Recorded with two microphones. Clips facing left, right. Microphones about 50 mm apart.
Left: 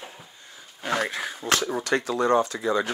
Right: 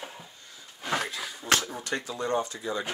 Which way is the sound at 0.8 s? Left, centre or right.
Left.